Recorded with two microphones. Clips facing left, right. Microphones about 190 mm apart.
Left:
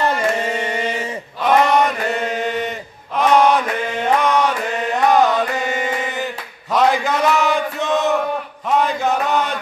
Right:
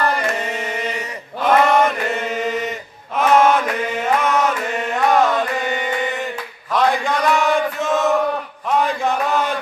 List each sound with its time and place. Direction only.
0.5 s chant: centre (ahead or behind)